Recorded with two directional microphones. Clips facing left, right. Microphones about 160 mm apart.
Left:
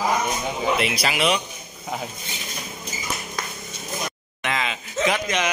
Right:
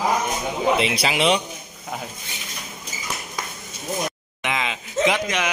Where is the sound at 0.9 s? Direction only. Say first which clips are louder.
Right 2 dB; 25° right (ahead or behind).